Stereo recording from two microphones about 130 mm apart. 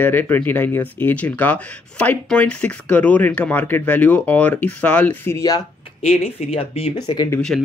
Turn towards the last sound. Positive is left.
turn(degrees=0)  # may be behind; listen again after turning